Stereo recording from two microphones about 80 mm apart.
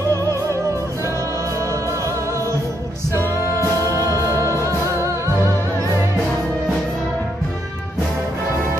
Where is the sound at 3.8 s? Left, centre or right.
Left.